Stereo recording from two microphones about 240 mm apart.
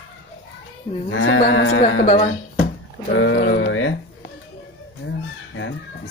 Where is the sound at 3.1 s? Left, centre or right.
Left.